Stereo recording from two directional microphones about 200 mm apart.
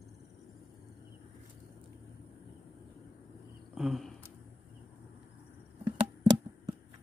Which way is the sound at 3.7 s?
Centre (ahead or behind).